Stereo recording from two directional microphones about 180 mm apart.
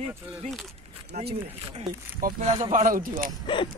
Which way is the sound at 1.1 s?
45° right (ahead or behind).